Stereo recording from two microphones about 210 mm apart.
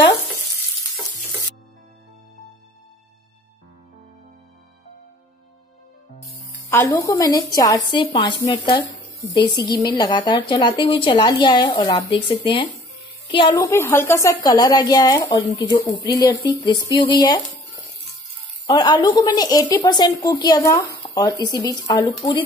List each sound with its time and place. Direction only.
6.7 s a woman's voice: 10° left (ahead or behind)
18.7 s a woman's voice: 20° left (ahead or behind)